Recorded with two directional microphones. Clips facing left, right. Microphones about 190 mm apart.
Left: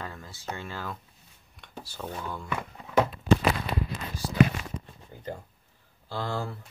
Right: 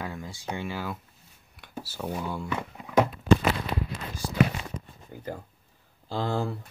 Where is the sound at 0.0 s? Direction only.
15° right (ahead or behind).